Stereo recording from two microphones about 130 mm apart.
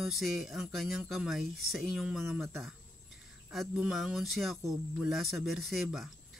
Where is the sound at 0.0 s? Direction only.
Centre (ahead or behind).